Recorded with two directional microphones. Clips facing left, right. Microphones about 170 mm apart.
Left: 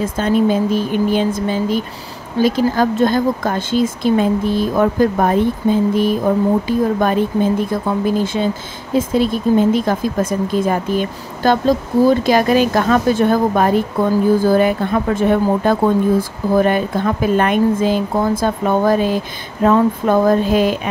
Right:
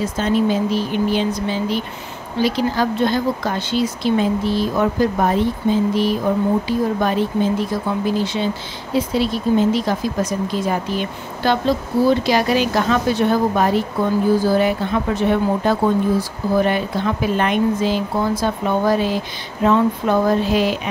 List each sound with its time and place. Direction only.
0.0 s speech: 50° left (ahead or behind)